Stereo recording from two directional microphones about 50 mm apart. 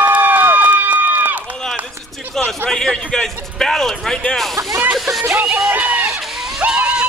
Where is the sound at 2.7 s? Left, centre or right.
Centre.